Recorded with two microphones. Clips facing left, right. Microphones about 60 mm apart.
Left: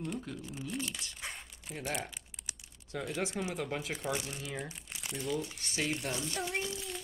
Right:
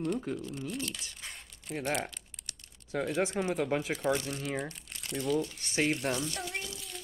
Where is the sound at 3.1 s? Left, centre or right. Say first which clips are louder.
Right 5 dB; centre.